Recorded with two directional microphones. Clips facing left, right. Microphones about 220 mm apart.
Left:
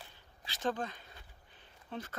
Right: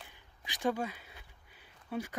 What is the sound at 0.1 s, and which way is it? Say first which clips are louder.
Speech: right 2 dB; 10° right (ahead or behind).